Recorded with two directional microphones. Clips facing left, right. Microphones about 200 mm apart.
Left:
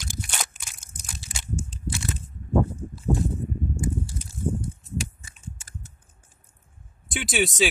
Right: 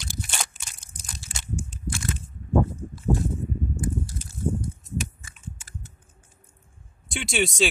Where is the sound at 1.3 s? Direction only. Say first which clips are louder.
Even; 15° left (ahead or behind).